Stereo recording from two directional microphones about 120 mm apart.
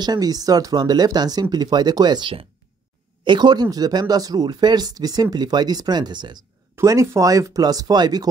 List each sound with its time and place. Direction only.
0.0 s speech: 35° right (ahead or behind)
6.7 s speech: 25° right (ahead or behind)